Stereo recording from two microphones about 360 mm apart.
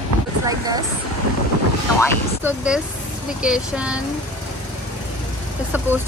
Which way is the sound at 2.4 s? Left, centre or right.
Centre.